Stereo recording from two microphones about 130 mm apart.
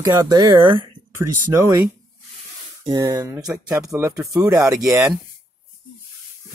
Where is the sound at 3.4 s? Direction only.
10° right (ahead or behind).